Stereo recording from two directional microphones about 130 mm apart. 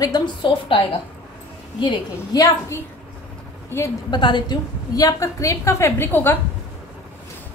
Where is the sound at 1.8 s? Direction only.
35° left (ahead or behind).